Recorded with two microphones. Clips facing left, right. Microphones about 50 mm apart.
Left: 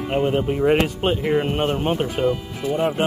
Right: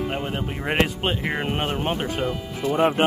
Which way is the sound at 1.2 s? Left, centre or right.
Centre.